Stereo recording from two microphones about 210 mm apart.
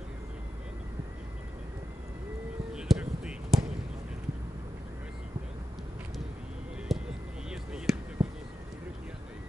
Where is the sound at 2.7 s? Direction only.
5° right (ahead or behind).